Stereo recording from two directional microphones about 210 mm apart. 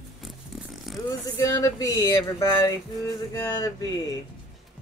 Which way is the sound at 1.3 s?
15° left (ahead or behind).